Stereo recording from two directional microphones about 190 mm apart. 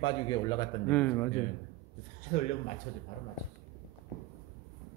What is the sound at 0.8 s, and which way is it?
Speech, 10° left (ahead or behind).